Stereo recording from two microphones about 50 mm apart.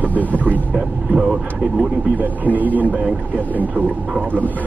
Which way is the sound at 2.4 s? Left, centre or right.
Right.